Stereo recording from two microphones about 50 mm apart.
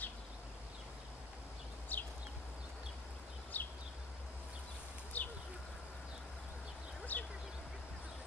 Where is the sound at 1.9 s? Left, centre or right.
Left.